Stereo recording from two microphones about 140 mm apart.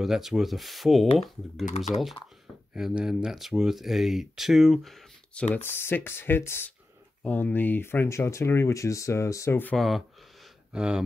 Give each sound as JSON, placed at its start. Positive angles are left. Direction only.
{"t": 0.0, "sound": "speech", "side_deg": -5}
{"t": 2.7, "sound": "speech", "side_deg": -5}
{"t": 5.5, "sound": "speech", "side_deg": 15}
{"t": 9.8, "sound": "speech", "side_deg": 0}